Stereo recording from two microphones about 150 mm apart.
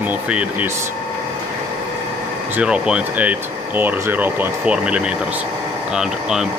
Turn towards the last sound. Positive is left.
turn(degrees=-5)  # may be behind; listen again after turning